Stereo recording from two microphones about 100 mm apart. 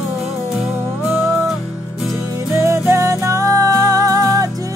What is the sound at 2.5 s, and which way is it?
Music, 25° right (ahead or behind).